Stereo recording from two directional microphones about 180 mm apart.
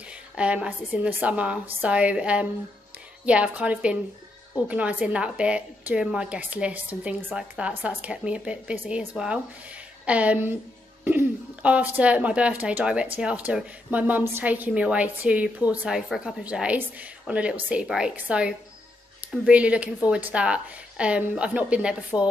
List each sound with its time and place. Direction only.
0.4 s speech: 5° right (ahead or behind)